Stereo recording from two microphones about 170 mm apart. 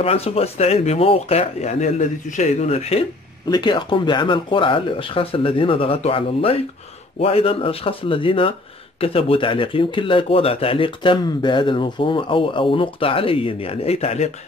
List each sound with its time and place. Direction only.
0.0 s speech: 35° left (ahead or behind)
3.4 s speech: 25° left (ahead or behind)